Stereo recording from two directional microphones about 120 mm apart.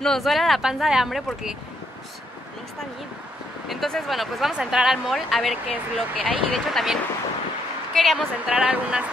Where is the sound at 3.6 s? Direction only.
Centre (ahead or behind).